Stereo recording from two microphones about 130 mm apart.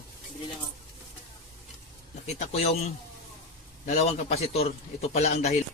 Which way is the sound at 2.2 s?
55° left (ahead or behind).